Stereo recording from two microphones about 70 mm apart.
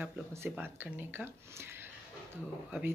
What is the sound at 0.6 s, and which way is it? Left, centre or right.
Speech, right.